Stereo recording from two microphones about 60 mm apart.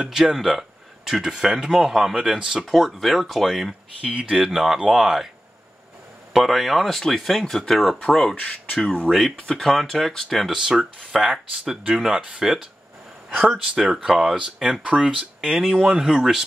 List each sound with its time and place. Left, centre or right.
0.0 s speech: centre
2.6 s speech: centre
4.0 s speech: centre
4.3 s speech: centre
6.3 s speech: centre
10.5 s speech: centre
13.7 s speech: centre
15.5 s speech: centre